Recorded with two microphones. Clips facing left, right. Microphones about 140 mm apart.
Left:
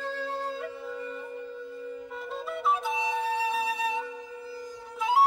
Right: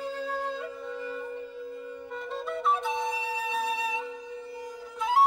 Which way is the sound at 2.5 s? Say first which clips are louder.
Even; centre (ahead or behind).